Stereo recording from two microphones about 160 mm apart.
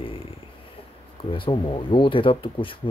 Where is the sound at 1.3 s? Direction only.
30° left (ahead or behind).